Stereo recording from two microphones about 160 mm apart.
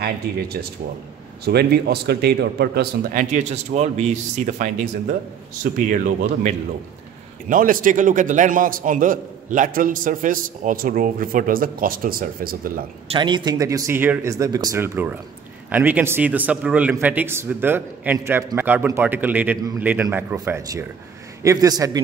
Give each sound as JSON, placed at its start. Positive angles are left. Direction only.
{"t": 0.0, "sound": "speech", "side_deg": -75}
{"t": 1.4, "sound": "a man's voice", "side_deg": -90}
{"t": 13.1, "sound": "a man's voice", "side_deg": -30}